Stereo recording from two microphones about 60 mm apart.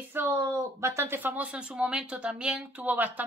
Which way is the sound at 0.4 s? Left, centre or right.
Right.